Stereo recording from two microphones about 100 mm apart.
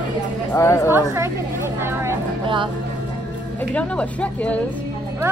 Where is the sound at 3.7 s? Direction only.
15° left (ahead or behind).